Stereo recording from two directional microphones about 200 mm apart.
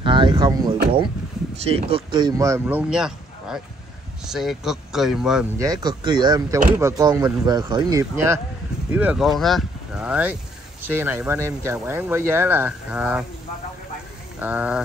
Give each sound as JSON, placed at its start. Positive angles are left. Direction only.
{"t": 0.0, "sound": "speech", "side_deg": -25}
{"t": 5.6, "sound": "speech", "side_deg": -20}
{"t": 14.4, "sound": "speech", "side_deg": -5}